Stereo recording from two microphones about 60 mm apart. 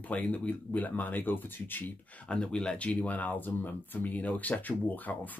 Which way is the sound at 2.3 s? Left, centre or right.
Centre.